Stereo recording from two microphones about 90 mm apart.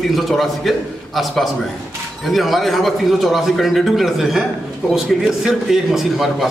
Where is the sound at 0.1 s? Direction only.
Centre (ahead or behind).